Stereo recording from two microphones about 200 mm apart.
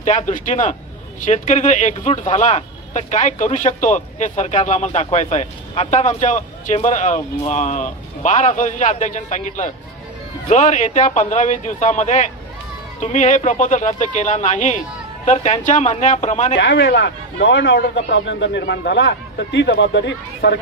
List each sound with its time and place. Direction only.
0.0 s speech: 35° left (ahead or behind)
16.5 s a man's voice: 60° left (ahead or behind)